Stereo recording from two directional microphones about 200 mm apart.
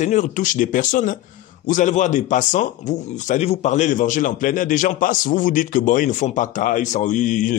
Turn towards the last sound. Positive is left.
turn(degrees=40)  # may be behind; listen again after turning